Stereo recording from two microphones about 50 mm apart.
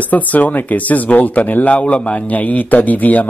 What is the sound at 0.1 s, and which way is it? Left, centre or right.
Speech, left.